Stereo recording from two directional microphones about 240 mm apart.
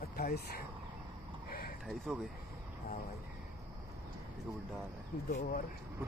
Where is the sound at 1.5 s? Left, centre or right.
Left.